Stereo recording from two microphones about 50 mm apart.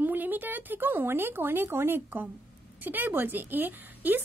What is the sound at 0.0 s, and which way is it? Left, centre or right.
Speech, right.